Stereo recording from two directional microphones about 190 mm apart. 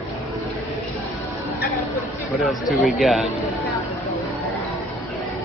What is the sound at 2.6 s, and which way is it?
Speech, centre (ahead or behind).